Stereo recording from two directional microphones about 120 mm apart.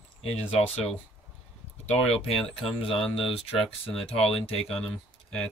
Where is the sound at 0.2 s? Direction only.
55° left (ahead or behind).